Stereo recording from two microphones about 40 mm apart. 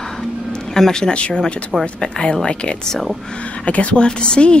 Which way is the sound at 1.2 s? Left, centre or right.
Left.